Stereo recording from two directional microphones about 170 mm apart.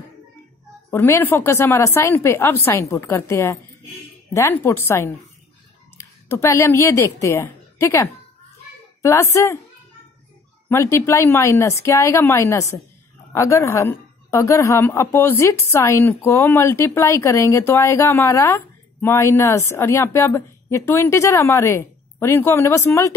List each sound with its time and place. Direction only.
0.8 s a woman's voice: 15° left (ahead or behind)
10.7 s a woman's voice: 15° left (ahead or behind)